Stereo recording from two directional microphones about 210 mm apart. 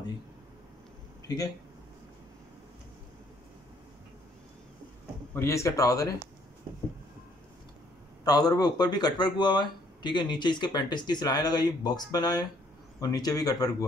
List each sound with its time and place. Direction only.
1.2 s a sound: 15° left (ahead or behind)
5.3 s speech: 15° left (ahead or behind)
8.2 s speech: 15° left (ahead or behind)